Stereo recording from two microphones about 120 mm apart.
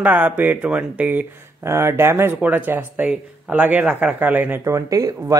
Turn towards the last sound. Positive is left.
turn(degrees=-30)  # may be behind; listen again after turning